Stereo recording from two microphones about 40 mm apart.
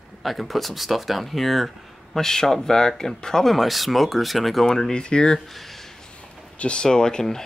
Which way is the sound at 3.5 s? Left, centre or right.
Centre.